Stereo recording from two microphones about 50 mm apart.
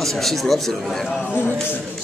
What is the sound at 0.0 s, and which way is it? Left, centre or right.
Speech, centre.